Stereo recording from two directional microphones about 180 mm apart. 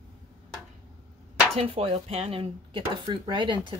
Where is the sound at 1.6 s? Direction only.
35° right (ahead or behind).